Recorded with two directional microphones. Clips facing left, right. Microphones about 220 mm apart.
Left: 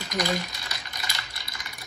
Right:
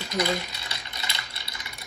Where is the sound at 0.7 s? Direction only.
25° right (ahead or behind).